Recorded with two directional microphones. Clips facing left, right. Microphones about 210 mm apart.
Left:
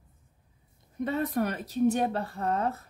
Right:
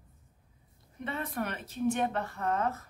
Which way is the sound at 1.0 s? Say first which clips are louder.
Left 7 dB; 40° left (ahead or behind).